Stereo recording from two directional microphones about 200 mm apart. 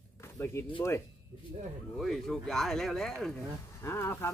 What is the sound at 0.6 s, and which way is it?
Speech, 15° left (ahead or behind).